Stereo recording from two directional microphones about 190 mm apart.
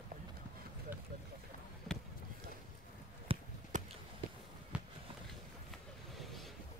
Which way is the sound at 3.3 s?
30° right (ahead or behind).